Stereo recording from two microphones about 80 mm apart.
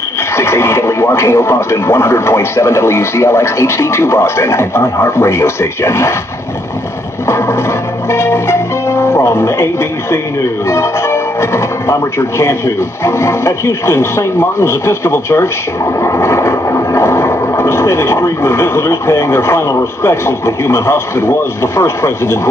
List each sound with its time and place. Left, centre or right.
0.4 s speech: left
7.2 s music: left
12.2 s speech: left
16.0 s a sound: left
20.0 s speech: left